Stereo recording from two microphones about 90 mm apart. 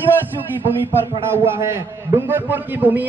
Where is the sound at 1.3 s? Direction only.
30° right (ahead or behind).